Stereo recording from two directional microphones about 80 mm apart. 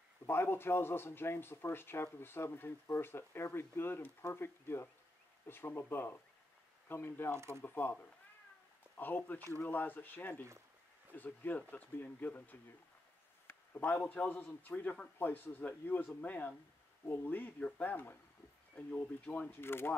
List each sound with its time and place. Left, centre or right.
0.3 s speech: left
7.3 s speech: right
7.6 s speech: left
19.6 s speech: left